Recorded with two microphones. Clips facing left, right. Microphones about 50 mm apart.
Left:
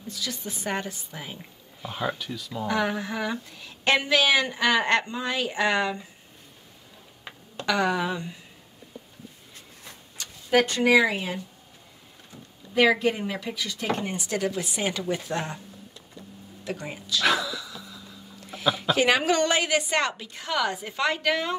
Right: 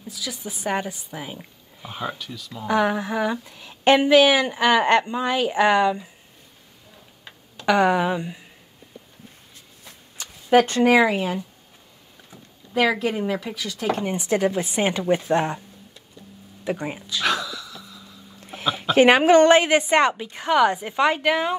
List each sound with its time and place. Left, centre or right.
0.0 s a woman's voice: centre
2.6 s speech: centre
7.6 s speech: right
10.1 s a sound: right
10.9 s speech: right
12.7 s a woman's voice: centre
14.0 s speech: right
16.6 s speech: right
17.3 s a sound: centre
18.5 s a sound: right
18.9 s speech: right; by 21.5 s centre